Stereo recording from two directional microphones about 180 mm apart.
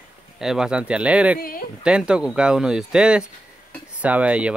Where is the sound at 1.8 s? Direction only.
5° right (ahead or behind).